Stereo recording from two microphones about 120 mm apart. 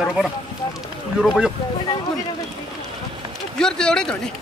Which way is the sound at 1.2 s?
5° right (ahead or behind).